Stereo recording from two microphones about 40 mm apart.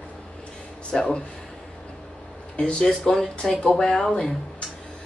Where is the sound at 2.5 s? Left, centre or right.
Left.